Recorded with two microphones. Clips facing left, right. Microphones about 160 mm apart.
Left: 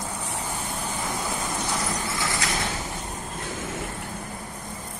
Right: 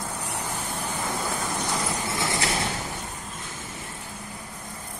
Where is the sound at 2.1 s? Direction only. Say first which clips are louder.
Right 2 dB; 25° right (ahead or behind).